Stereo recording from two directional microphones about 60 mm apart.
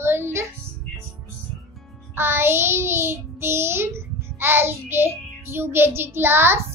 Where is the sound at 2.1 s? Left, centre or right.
Right.